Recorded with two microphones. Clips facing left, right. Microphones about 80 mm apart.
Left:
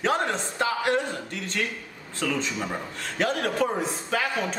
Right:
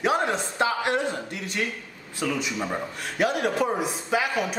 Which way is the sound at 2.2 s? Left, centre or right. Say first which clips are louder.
Even; centre.